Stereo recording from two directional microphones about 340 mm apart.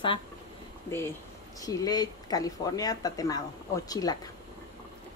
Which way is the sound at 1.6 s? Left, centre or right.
Centre.